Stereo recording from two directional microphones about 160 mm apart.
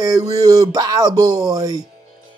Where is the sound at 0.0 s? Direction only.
25° right (ahead or behind).